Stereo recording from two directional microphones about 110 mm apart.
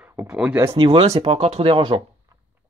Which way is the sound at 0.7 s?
50° right (ahead or behind).